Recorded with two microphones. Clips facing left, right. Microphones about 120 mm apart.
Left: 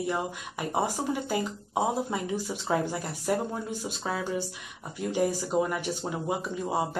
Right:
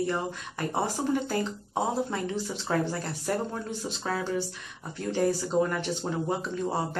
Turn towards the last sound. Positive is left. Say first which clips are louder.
# even
turn(degrees=10)  # may be behind; listen again after turning